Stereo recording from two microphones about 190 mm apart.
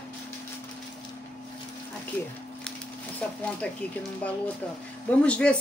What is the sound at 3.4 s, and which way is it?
Speech, 5° left (ahead or behind).